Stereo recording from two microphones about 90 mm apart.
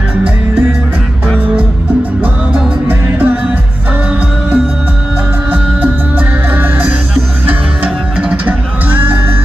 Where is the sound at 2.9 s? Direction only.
20° right (ahead or behind).